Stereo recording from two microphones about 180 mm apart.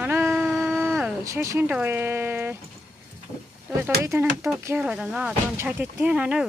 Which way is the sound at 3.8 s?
15° right (ahead or behind).